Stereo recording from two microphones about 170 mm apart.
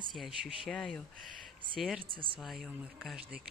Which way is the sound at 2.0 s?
30° right (ahead or behind).